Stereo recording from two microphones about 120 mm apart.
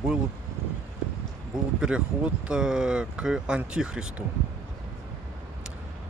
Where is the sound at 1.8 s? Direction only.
10° right (ahead or behind).